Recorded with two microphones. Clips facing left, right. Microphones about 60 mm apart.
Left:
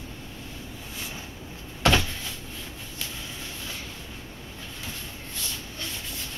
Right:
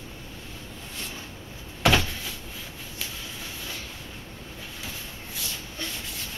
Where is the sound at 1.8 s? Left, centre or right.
Centre.